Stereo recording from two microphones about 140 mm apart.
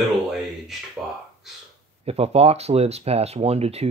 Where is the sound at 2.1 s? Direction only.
45° right (ahead or behind).